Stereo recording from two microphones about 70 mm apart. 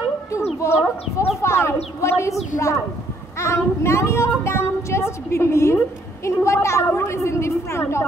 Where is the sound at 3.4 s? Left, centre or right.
Left.